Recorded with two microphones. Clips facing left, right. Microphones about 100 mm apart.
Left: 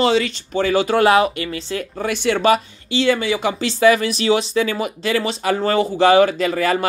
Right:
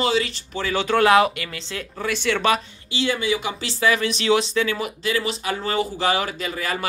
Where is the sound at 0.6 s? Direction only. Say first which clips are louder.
Left 4 dB; 40° left (ahead or behind).